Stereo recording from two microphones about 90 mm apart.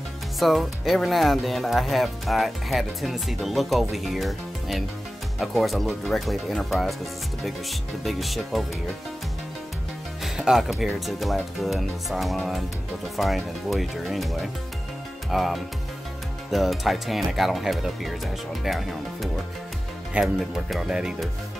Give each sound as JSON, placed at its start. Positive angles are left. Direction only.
{"t": 0.4, "sound": "speech", "side_deg": 0}
{"t": 8.0, "sound": "speech", "side_deg": 0}
{"t": 10.2, "sound": "speech", "side_deg": -5}